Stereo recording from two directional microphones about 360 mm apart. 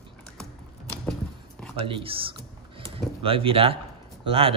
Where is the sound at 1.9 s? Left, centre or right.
Centre.